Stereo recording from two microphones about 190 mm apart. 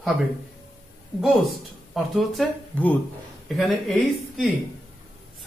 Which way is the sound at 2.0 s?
Centre (ahead or behind).